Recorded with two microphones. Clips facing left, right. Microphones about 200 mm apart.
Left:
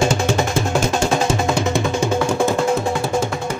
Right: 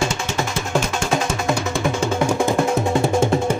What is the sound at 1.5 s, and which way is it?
Music, 20° left (ahead or behind).